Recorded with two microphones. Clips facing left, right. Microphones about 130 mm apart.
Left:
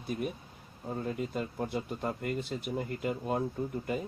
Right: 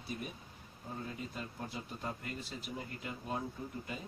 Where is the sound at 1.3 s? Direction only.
60° left (ahead or behind).